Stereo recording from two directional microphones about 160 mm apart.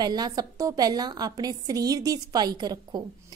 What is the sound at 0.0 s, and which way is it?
A woman's voice, 25° right (ahead or behind).